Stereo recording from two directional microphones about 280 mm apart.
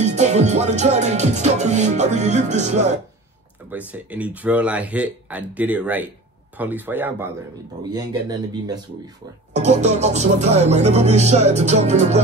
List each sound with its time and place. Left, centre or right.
0.0 s music: right
3.7 s speech: centre
9.5 s music: right